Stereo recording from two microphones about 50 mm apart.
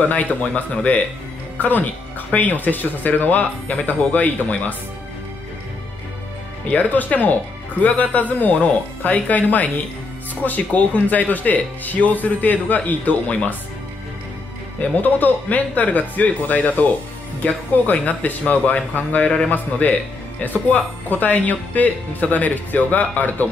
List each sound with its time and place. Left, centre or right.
0.0 s speech: left
6.7 s speech: left
14.8 s speech: left
17.9 s speech: left
19.2 s a man's voice: centre
19.5 s speech: left